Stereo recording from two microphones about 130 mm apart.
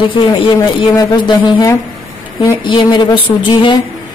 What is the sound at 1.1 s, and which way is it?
Speech, 35° left (ahead or behind).